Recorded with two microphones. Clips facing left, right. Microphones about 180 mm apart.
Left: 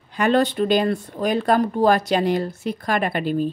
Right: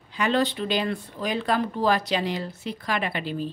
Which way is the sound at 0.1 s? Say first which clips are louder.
Left 5 dB; 50° left (ahead or behind).